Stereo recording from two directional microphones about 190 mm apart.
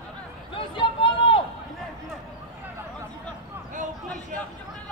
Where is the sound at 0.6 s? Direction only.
25° left (ahead or behind).